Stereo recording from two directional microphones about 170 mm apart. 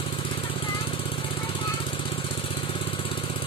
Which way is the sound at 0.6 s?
30° left (ahead or behind).